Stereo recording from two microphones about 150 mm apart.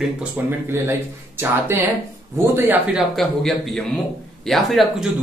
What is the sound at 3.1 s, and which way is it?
Speech, centre (ahead or behind).